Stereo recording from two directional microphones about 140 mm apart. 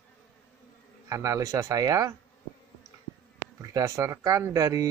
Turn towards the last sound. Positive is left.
turn(degrees=-25)  # may be behind; listen again after turning